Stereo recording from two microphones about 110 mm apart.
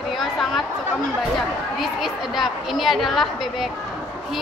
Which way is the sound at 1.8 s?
Centre (ahead or behind).